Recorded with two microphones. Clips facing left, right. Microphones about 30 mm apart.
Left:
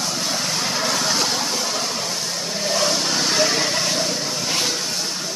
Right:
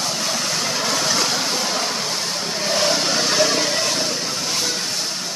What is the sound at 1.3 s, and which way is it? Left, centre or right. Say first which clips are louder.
Vehicle: right 1 dB; centre.